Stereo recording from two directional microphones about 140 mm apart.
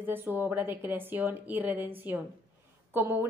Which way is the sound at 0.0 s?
15° right (ahead or behind).